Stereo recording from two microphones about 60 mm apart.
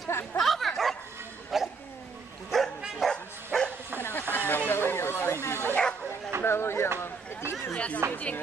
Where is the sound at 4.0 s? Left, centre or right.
Left.